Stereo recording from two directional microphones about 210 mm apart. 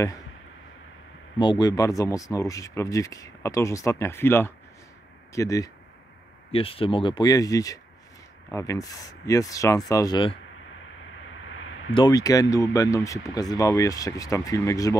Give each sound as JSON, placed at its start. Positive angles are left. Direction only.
{"t": 1.4, "sound": "speech", "side_deg": 20}
{"t": 6.5, "sound": "speech", "side_deg": 25}
{"t": 11.9, "sound": "speech", "side_deg": 20}